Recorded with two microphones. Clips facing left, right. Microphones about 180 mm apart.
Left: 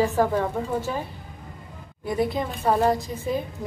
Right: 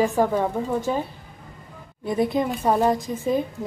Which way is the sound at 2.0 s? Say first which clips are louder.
Right 3 dB; 20° right (ahead or behind).